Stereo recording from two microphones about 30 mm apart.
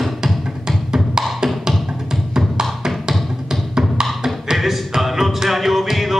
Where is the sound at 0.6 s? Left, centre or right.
Centre.